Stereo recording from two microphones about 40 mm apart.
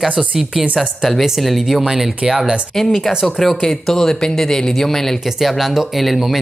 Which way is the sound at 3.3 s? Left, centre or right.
Centre.